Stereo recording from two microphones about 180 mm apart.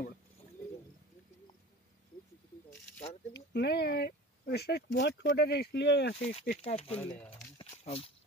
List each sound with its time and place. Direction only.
3.3 s speech: 65° left (ahead or behind)
6.4 s speech: 35° left (ahead or behind)
7.0 s speech: 10° left (ahead or behind)
7.2 s a sound: 35° left (ahead or behind)